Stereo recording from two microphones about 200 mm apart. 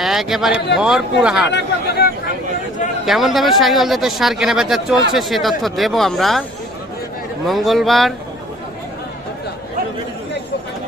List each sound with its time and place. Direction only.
0.0 s a sound: centre (ahead or behind)
0.5 s a man's voice: 55° left (ahead or behind)
0.7 s speech: 5° right (ahead or behind)
1.5 s speech: 55° left (ahead or behind)
3.1 s speech: centre (ahead or behind)
7.4 s speech: centre (ahead or behind)